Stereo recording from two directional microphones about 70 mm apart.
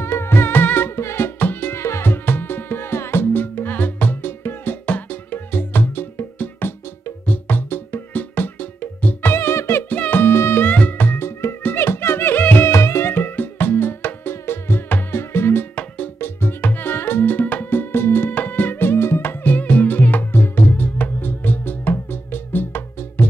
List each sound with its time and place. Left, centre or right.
0.0 s music: left
9.9 s music: left